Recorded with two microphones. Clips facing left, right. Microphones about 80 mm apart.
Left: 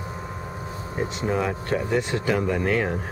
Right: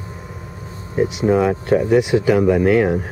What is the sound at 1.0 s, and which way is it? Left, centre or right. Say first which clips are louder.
Speech: right 9 dB; centre.